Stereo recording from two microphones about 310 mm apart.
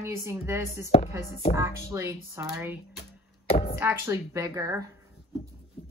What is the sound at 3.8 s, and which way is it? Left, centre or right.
A woman's voice, centre.